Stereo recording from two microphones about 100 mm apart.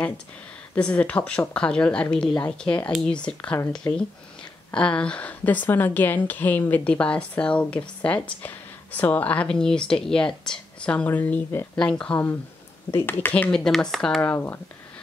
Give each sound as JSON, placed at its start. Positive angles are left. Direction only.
{"t": 0.7, "sound": "a woman's voice", "side_deg": 10}
{"t": 13.5, "sound": "speech", "side_deg": 5}
{"t": 14.2, "sound": "speech", "side_deg": 20}